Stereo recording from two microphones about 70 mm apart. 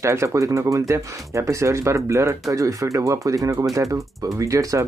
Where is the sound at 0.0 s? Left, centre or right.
Right.